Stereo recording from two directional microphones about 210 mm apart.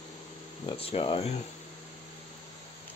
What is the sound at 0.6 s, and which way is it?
Speech, 25° left (ahead or behind).